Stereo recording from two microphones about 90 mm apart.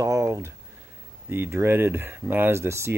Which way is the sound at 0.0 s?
35° right (ahead or behind).